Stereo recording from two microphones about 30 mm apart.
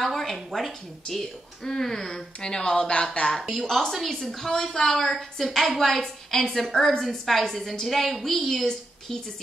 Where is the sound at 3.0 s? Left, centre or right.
Left.